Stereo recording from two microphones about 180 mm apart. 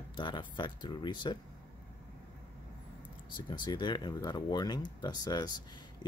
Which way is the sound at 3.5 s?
25° left (ahead or behind).